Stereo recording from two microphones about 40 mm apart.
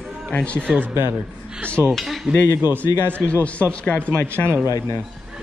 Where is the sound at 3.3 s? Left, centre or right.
Left.